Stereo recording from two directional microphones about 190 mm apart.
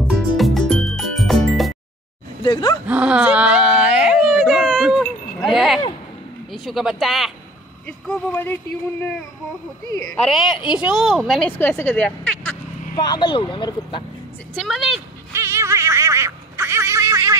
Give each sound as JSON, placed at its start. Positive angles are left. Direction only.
{"t": 0.1, "sound": "music", "side_deg": 0}
{"t": 2.4, "sound": "speech", "side_deg": 20}
{"t": 2.9, "sound": "a sound", "side_deg": -5}
{"t": 6.5, "sound": "a woman's voice", "side_deg": 0}
{"t": 8.1, "sound": "speech", "side_deg": 10}
{"t": 10.1, "sound": "a woman's voice", "side_deg": 0}
{"t": 12.9, "sound": "speech", "side_deg": 25}
{"t": 14.5, "sound": "a woman's voice", "side_deg": 0}
{"t": 15.3, "sound": "a sound", "side_deg": -15}